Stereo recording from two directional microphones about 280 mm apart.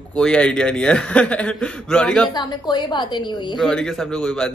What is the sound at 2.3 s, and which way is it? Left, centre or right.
A woman's voice, centre.